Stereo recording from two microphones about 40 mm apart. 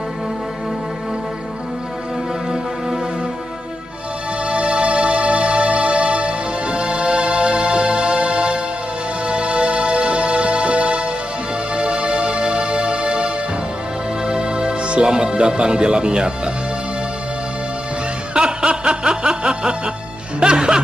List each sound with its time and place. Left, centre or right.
4.5 s music: right
15.0 s speech: right
18.3 s music: right